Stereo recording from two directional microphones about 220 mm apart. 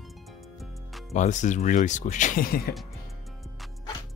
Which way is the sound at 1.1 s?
35° left (ahead or behind).